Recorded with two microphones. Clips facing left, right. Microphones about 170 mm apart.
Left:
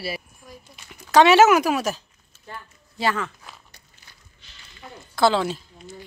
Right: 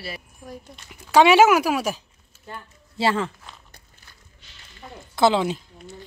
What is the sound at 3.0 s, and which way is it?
Speech, 30° right (ahead or behind).